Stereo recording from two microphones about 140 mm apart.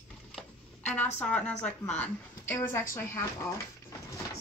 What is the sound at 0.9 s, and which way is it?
A woman's voice, 10° left (ahead or behind).